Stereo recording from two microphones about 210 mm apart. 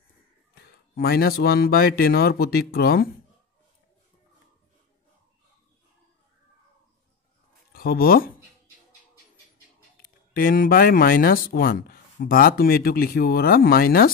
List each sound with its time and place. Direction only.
0.6 s speech: 45° left (ahead or behind)
7.7 s speech: 45° left (ahead or behind)
9.9 s speech: 45° left (ahead or behind)